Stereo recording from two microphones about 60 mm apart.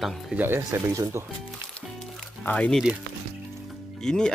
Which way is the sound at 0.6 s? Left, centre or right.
Right.